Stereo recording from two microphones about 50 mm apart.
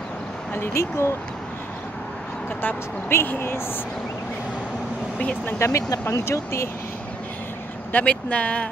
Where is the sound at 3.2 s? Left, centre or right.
Left.